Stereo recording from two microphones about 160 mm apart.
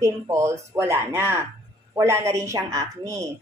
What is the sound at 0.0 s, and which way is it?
A woman's voice, 20° right (ahead or behind).